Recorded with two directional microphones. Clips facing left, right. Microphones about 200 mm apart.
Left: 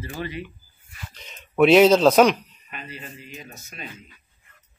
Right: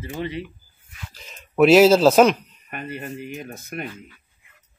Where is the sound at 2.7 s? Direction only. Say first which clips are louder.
Right 7 dB; 55° right (ahead or behind).